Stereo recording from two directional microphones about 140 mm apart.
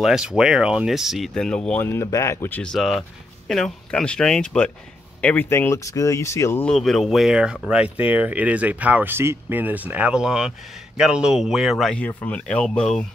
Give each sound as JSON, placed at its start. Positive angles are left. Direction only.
{"t": 0.0, "sound": "speech", "side_deg": -5}
{"t": 1.9, "sound": "speech", "side_deg": 20}
{"t": 6.6, "sound": "speech", "side_deg": 5}